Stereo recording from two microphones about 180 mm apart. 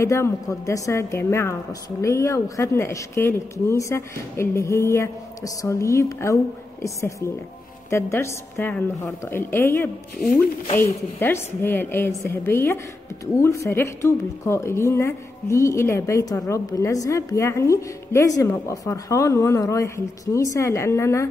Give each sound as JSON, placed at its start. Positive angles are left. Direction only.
{"t": 0.0, "sound": "a woman's voice", "side_deg": 15}